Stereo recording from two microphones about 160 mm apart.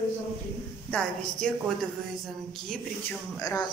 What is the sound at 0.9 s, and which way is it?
Speech, 5° left (ahead or behind).